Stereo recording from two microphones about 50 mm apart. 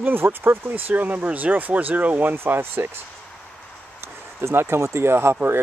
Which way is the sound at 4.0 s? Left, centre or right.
Right.